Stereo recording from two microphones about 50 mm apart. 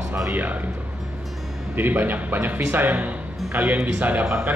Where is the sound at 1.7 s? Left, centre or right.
Right.